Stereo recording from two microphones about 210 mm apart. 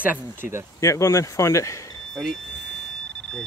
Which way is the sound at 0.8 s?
15° left (ahead or behind).